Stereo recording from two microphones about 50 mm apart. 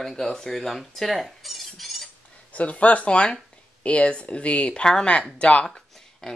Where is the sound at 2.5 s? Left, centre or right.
Left.